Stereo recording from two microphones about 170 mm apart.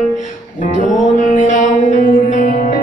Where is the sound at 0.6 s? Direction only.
50° left (ahead or behind).